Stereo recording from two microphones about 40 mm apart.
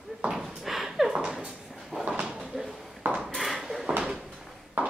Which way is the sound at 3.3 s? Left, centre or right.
Centre.